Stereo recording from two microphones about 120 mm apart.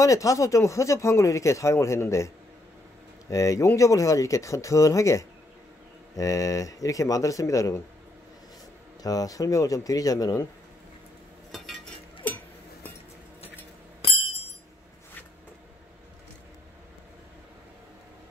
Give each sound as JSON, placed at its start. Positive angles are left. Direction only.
{"t": 0.0, "sound": "speech", "side_deg": 25}
{"t": 9.0, "sound": "speech", "side_deg": 30}
{"t": 11.5, "sound": "stir", "side_deg": 0}